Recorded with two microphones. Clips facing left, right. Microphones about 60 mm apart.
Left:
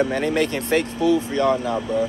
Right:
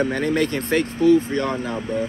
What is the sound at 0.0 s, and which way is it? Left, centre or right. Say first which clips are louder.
Speech: even; right.